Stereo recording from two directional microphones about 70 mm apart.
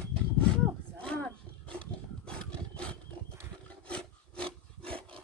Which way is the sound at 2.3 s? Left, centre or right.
Centre.